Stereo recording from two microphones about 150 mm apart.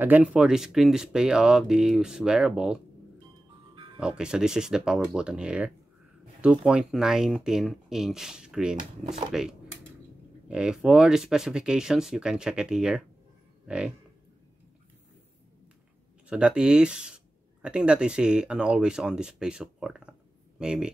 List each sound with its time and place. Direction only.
0.0 s speech: 10° right (ahead or behind)
3.7 s music: 30° right (ahead or behind)
4.0 s speech: 5° right (ahead or behind)
13.7 s a sound: 5° right (ahead or behind)
16.3 s speech: 5° right (ahead or behind)